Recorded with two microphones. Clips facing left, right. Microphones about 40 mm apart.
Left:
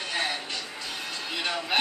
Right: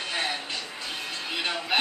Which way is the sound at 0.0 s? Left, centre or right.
Centre.